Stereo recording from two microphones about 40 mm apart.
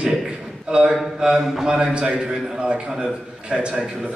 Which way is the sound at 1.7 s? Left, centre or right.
Right.